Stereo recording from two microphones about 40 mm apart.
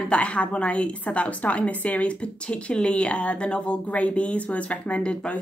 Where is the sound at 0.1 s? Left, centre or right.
Left.